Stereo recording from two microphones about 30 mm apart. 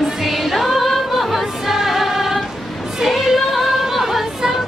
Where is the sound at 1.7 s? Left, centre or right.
Centre.